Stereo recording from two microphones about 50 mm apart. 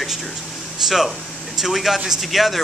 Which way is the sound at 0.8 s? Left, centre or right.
Centre.